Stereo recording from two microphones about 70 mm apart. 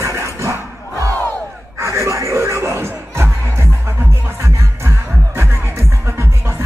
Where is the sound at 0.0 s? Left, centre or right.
Right.